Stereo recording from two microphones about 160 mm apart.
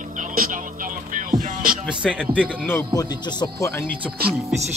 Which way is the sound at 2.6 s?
20° left (ahead or behind).